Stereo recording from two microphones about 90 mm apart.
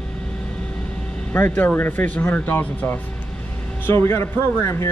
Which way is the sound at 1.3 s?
20° left (ahead or behind).